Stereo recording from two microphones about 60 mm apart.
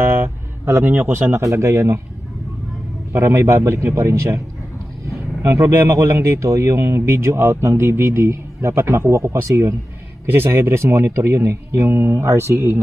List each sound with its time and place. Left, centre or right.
0.0 s speech: right
3.1 s speech: right
5.5 s speech: right
9.4 s speech: right
10.3 s speech: right